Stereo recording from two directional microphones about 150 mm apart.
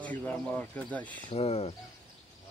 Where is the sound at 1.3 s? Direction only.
45° left (ahead or behind).